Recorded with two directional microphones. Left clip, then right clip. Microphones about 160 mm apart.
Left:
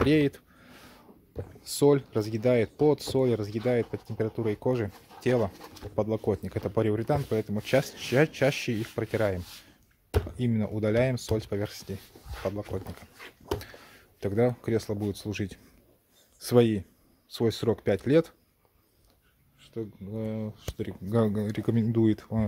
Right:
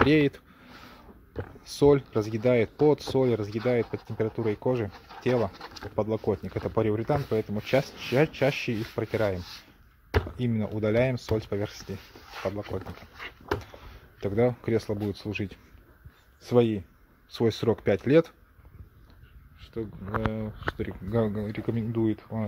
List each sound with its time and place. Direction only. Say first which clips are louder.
0.0 s speech: right 2 dB; 5° left (ahead or behind)
0.8 s a sound: right 3 dB; 5° left (ahead or behind)
1.4 s speech: right 2 dB; 5° left (ahead or behind)
16.3 s speech: even; 30° left (ahead or behind)
17.3 s speech: right 2 dB; centre (ahead or behind)
19.6 s speech: right 2 dB; centre (ahead or behind)
21.1 s speech: left 1 dB; 25° left (ahead or behind); by 22.5 s 45° left (ahead or behind)